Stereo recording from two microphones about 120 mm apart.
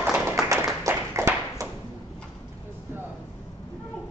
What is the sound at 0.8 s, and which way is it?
Tap, 20° right (ahead or behind).